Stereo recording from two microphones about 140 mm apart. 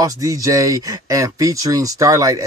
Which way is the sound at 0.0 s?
25° right (ahead or behind).